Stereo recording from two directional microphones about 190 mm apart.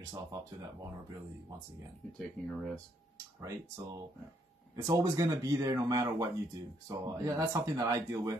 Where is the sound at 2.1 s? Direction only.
5° left (ahead or behind).